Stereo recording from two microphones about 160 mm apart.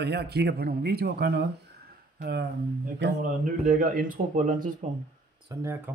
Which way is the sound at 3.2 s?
55° right (ahead or behind).